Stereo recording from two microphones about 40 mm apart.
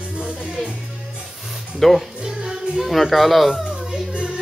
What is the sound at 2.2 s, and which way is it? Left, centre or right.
Children playing, centre.